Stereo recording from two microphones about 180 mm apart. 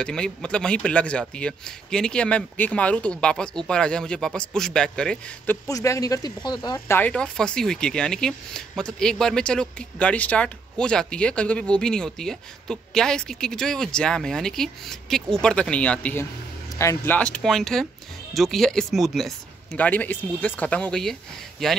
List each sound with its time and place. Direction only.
0.0 s speech: 5° left (ahead or behind)
5.7 s speech: 20° left (ahead or behind)
7.0 s speech: 5° left (ahead or behind)